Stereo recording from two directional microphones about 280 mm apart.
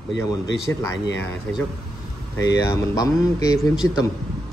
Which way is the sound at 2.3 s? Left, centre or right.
Centre.